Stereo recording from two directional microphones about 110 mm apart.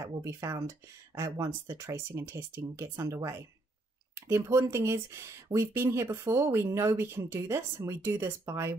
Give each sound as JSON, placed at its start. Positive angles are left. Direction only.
{"t": 0.0, "sound": "speech", "side_deg": -25}